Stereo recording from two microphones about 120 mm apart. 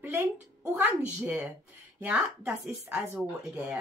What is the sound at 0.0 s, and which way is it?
A woman's voice, 15° right (ahead or behind).